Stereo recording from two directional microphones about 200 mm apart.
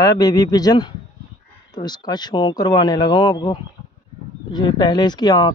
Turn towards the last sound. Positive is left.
turn(degrees=20)  # may be behind; listen again after turning